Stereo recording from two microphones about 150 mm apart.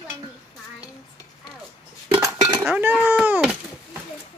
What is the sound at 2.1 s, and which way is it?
Cutlery, 20° right (ahead or behind).